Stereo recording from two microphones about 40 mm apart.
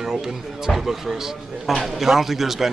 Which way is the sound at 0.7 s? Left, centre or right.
Centre.